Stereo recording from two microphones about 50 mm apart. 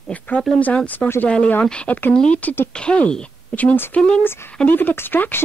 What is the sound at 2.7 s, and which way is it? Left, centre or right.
Speech, centre.